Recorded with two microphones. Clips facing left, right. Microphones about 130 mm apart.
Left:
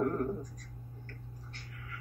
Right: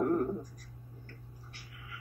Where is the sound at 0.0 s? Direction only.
20° right (ahead or behind).